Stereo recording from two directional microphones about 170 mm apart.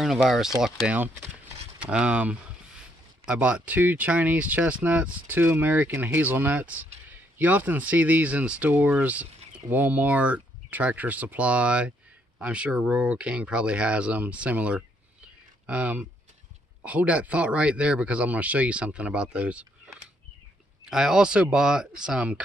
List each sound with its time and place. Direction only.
0.0 s speech: centre (ahead or behind)